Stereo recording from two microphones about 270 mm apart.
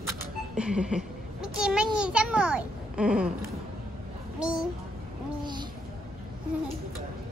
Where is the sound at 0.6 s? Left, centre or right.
Centre.